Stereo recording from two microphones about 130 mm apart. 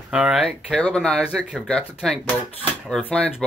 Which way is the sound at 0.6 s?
5° left (ahead or behind).